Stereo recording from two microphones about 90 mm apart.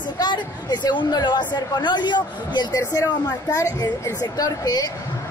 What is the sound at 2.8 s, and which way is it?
Speech, 40° left (ahead or behind).